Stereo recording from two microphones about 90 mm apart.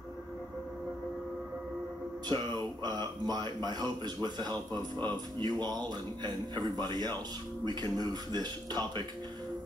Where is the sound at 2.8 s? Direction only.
55° right (ahead or behind).